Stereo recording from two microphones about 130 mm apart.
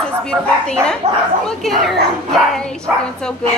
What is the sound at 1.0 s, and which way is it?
Speech, 55° right (ahead or behind).